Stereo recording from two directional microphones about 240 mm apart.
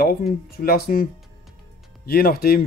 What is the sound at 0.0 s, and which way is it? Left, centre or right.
Speech, left.